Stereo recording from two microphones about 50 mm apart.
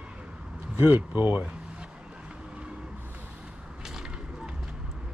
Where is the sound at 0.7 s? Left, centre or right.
Right.